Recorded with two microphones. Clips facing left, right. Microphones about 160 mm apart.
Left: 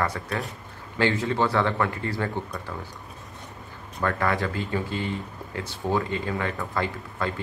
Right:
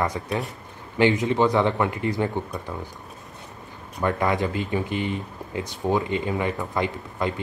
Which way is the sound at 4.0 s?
20° right (ahead or behind).